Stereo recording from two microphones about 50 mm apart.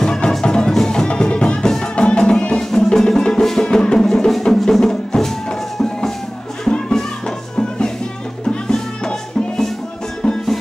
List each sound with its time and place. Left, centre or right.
0.0 s music: centre